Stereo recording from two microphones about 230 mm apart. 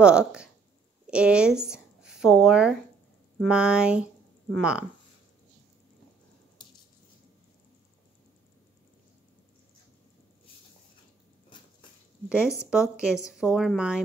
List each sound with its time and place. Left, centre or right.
0.0 s a woman's voice: centre
12.3 s speech: centre